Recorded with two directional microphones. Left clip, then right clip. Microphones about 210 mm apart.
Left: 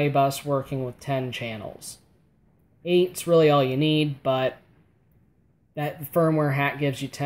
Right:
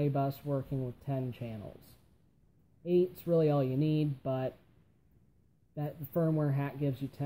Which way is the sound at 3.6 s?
35° left (ahead or behind).